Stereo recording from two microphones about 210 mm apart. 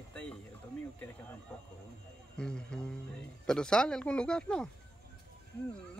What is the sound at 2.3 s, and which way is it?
Speech, 5° left (ahead or behind).